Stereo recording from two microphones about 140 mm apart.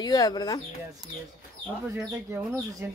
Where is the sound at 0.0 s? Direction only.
30° left (ahead or behind).